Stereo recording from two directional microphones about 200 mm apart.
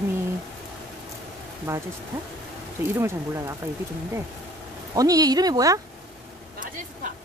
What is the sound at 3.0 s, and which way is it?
Speech, 15° right (ahead or behind).